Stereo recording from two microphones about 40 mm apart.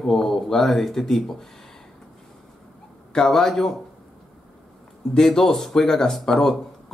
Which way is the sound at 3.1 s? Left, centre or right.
Centre.